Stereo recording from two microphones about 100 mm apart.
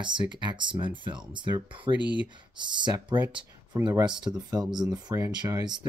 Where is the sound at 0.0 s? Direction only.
50° right (ahead or behind).